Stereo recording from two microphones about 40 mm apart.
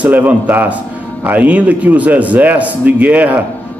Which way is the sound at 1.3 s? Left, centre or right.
Right.